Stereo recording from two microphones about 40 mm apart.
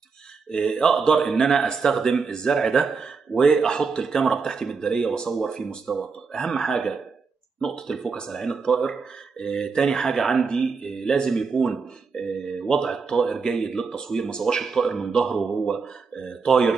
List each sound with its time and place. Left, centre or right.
0.5 s speech: centre